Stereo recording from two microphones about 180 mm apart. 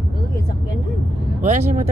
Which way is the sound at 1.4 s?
40° right (ahead or behind).